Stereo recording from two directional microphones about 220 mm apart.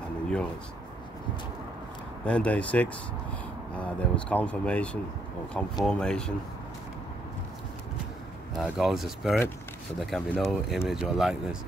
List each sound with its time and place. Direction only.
2.2 s speech: 5° left (ahead or behind)
8.5 s speech: centre (ahead or behind)